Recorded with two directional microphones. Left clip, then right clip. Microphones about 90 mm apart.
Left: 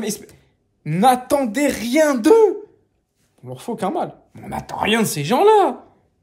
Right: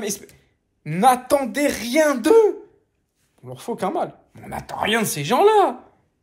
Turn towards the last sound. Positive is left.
turn(degrees=30)  # may be behind; listen again after turning